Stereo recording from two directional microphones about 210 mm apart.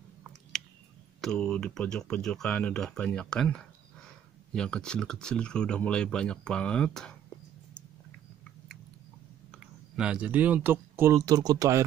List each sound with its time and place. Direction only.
1.2 s speech: 5° left (ahead or behind)
9.5 s speech: 5° right (ahead or behind)